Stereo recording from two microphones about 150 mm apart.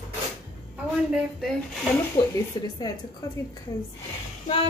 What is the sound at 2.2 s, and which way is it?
A woman's voice, 30° left (ahead or behind).